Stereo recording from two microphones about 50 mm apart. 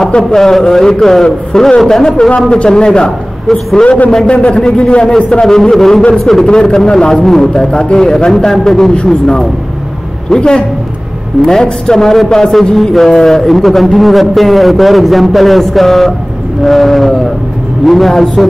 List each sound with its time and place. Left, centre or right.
0.3 s a man's voice: centre
3.5 s speech: centre
4.3 s a man's voice: left; by 6.4 s centre
6.4 s a man's voice: centre